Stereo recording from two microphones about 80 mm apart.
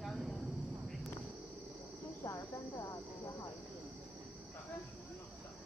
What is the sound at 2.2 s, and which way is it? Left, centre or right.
Cricket, left.